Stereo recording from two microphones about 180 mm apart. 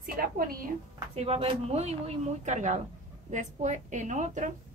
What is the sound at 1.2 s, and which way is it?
Speech, 30° right (ahead or behind).